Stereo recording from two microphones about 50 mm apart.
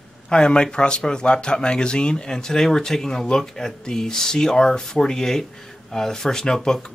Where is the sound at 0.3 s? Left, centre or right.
Centre.